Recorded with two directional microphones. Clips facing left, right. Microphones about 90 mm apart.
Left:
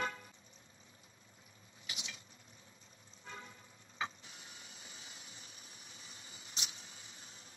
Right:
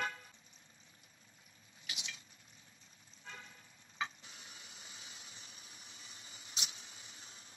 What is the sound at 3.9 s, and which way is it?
Tick-tock, 35° left (ahead or behind).